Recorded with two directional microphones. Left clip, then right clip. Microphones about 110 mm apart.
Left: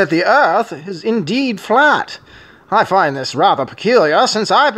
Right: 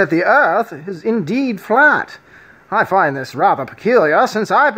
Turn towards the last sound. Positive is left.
turn(degrees=15)  # may be behind; listen again after turning